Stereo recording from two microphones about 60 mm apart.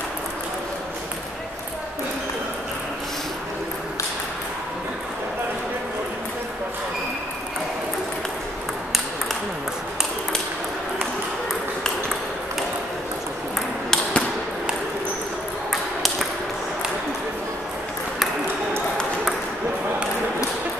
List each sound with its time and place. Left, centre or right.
13.6 s ping: centre
15.7 s ping: centre